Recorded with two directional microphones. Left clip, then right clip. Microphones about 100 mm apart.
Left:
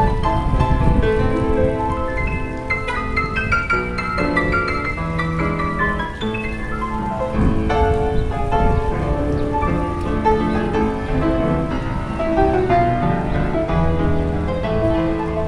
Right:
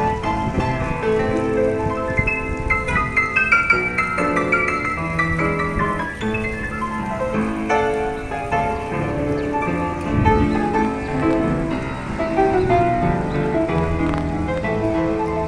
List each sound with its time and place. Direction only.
12.4 s music: 10° right (ahead or behind)